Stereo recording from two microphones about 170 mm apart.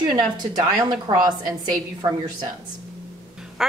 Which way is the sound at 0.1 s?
25° right (ahead or behind).